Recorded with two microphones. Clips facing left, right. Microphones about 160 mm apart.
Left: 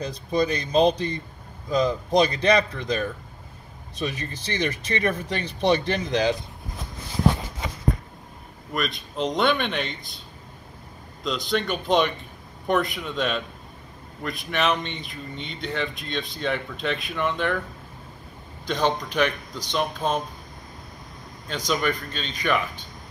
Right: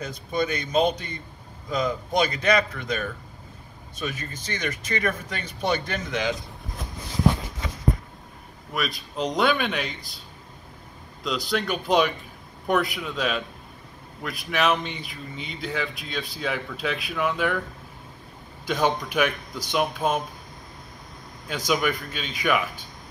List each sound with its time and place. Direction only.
0.0 s speech: 35° left (ahead or behind)
8.7 s speech: centre (ahead or behind)
11.2 s speech: centre (ahead or behind)
18.7 s speech: 10° right (ahead or behind)
21.6 s speech: 10° right (ahead or behind)